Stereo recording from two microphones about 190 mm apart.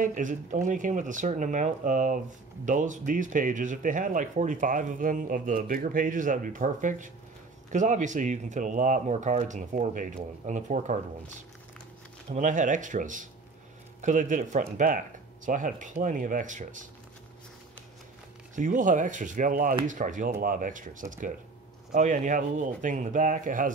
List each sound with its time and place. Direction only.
0.0 s speech: 45° right (ahead or behind)
18.5 s speech: 40° right (ahead or behind)